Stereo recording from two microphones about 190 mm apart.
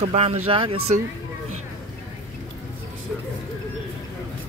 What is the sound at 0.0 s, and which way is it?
Speech, 35° right (ahead or behind).